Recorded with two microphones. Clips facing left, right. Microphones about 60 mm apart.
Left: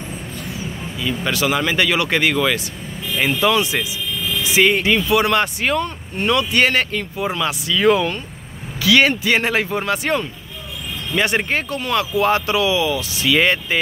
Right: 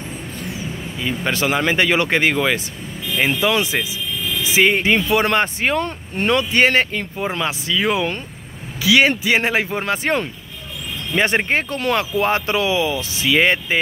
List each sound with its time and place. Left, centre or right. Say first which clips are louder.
0.9 s speech: even; right
7.7 s speech: left 5 dB; centre